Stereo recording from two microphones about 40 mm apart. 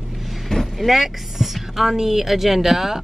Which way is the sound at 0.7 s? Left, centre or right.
Centre.